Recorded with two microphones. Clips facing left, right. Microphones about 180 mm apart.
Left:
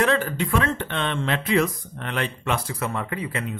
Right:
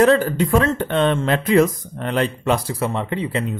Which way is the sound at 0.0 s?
40° right (ahead or behind).